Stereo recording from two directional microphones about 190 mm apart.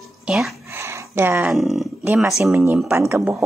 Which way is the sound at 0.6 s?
15° right (ahead or behind).